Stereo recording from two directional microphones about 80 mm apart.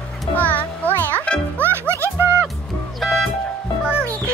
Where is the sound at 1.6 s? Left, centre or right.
Right.